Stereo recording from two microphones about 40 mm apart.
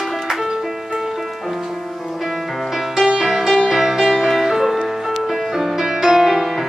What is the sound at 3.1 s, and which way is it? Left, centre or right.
Music, centre.